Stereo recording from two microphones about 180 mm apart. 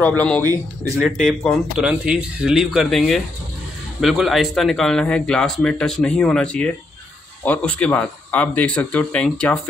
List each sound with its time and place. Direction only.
0.9 s a man's voice: centre (ahead or behind)